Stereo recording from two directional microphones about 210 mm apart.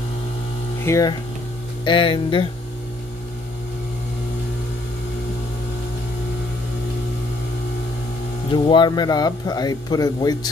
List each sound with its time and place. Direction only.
0.8 s speech: 15° left (ahead or behind)
8.5 s speech: 25° left (ahead or behind)